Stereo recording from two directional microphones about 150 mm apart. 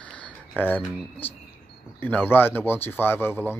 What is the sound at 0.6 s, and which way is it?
Speech, 10° left (ahead or behind).